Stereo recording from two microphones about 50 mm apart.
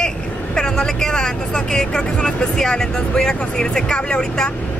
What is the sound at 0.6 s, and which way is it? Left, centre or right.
Speech, centre.